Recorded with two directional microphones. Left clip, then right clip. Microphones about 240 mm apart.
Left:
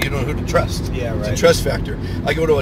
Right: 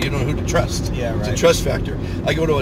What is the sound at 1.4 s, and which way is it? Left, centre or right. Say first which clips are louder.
Speech: left 1 dB; centre.